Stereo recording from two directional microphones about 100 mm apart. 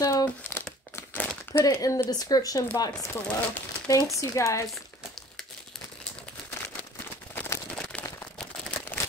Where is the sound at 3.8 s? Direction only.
35° left (ahead or behind).